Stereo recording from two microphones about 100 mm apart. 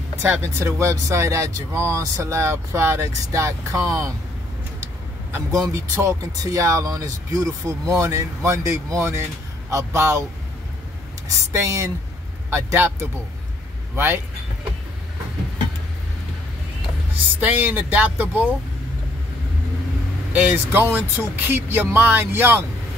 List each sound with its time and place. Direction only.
0.2 s speech: 25° right (ahead or behind)
5.5 s speech: 35° right (ahead or behind)
11.2 s speech: 30° right (ahead or behind)
13.9 s vehicle: 20° right (ahead or behind)
17.4 s speech: 15° right (ahead or behind)
20.3 s speech: 20° right (ahead or behind)